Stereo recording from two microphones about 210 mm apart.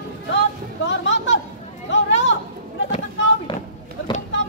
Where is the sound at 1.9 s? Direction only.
60° left (ahead or behind).